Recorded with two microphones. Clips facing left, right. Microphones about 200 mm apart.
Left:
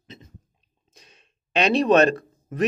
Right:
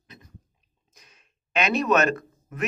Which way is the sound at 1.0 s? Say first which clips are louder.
Left 4 dB; 30° left (ahead or behind).